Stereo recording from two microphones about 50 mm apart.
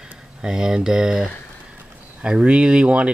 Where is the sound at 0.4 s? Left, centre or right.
Centre.